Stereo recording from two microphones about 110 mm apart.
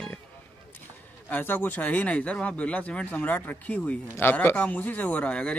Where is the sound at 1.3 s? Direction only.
15° left (ahead or behind).